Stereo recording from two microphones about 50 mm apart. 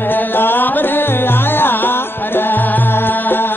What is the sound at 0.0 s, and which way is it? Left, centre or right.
Music, left.